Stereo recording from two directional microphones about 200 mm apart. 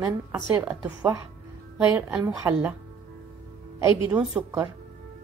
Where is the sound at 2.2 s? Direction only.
15° right (ahead or behind).